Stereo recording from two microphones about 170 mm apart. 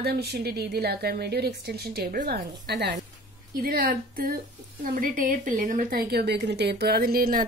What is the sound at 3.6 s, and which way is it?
A woman's voice, 60° right (ahead or behind).